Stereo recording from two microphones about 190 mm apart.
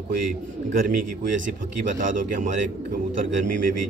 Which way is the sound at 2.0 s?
45° right (ahead or behind).